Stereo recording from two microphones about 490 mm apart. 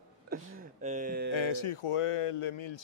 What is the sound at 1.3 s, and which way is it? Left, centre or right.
Speech, left.